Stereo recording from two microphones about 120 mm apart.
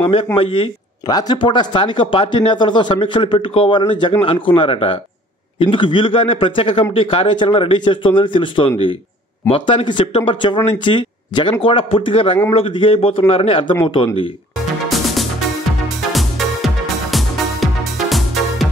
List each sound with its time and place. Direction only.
0.0 s speech: 50° left (ahead or behind)
1.0 s speech: 35° left (ahead or behind)
14.9 s music: centre (ahead or behind)